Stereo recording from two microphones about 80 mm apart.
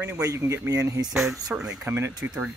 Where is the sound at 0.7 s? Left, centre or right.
Right.